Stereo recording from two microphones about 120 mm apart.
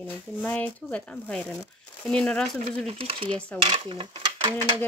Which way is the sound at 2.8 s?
50° right (ahead or behind).